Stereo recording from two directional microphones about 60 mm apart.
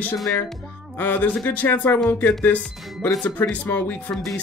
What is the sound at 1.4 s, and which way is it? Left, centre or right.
Speech, left.